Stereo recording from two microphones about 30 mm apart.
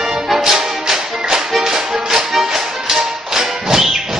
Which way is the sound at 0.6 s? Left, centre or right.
Centre.